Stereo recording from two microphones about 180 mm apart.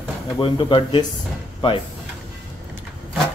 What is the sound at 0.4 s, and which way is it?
Speech, 25° left (ahead or behind).